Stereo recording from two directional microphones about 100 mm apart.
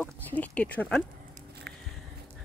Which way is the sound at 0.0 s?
15° left (ahead or behind).